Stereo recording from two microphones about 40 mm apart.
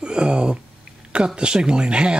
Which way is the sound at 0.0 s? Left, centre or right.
Right.